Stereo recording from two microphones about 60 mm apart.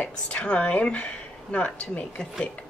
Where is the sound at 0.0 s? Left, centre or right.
Centre.